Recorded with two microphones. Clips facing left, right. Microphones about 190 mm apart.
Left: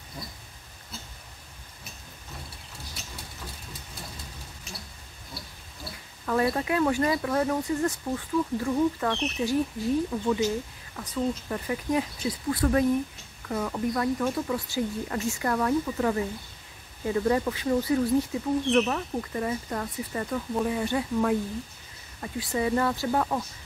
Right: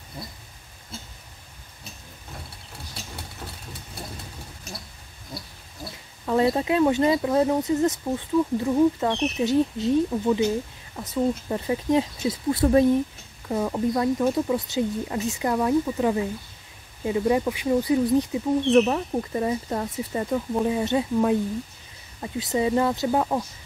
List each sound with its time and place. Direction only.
6.2 s speech: 20° right (ahead or behind)